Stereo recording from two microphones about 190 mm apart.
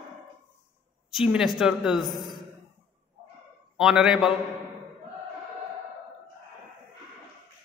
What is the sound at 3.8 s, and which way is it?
Speech, centre (ahead or behind).